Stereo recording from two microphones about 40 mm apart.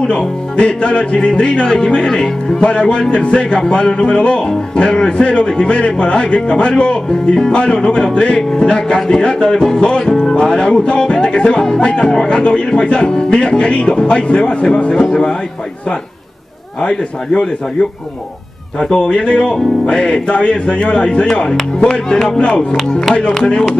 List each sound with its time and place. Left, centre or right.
0.0 s music: left
1.9 s speech: centre
2.6 s music: left
18.8 s music: left
21.7 s speech: left
22.4 s music: left